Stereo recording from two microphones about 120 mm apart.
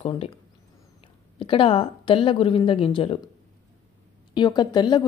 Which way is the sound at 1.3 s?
45° left (ahead or behind).